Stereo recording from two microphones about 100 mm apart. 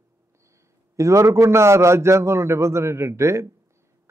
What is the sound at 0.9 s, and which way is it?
Speech, 30° right (ahead or behind).